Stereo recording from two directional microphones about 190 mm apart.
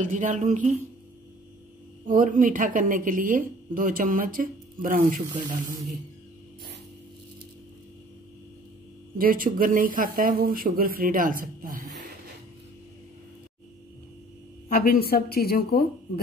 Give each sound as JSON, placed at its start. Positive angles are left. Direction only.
{"t": 0.0, "sound": "speech", "side_deg": -40}
{"t": 2.0, "sound": "speech", "side_deg": -45}
{"t": 9.2, "sound": "speech", "side_deg": -45}
{"t": 14.7, "sound": "a woman's voice", "side_deg": 50}